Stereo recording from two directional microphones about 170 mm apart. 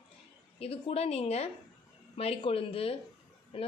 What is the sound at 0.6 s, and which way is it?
A woman's voice, 35° left (ahead or behind).